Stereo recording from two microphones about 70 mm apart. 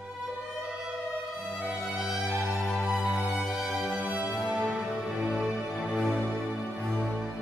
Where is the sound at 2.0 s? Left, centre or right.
Centre.